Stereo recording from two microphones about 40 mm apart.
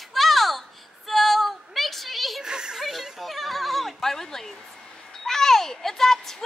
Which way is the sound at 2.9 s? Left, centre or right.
Centre.